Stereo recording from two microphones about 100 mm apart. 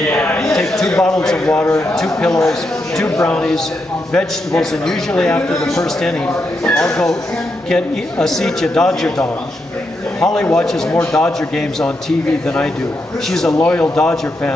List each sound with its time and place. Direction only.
0.0 s a sound: 15° left (ahead or behind)
0.5 s a man's voice: 5° left (ahead or behind)
10.2 s a man's voice: 5° left (ahead or behind)
13.3 s a man's voice: 5° left (ahead or behind)